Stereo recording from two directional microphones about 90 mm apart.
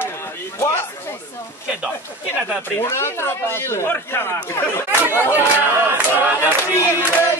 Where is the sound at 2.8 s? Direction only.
25° left (ahead or behind).